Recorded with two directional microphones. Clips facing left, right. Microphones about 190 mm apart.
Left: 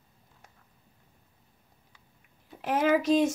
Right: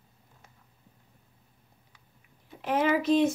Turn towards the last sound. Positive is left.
turn(degrees=45)  # may be behind; listen again after turning